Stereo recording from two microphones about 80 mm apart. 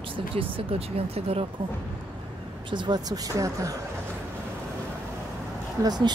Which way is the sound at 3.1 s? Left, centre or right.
Right.